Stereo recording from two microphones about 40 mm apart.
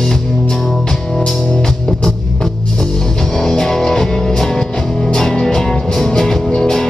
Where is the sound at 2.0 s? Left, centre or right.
Centre.